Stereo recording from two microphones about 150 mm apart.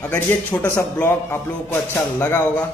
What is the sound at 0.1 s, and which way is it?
Speech, 15° left (ahead or behind).